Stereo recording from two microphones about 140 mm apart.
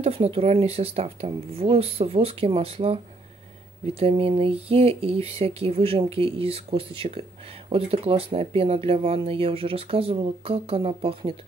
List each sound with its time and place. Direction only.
0.0 s speech: 45° right (ahead or behind)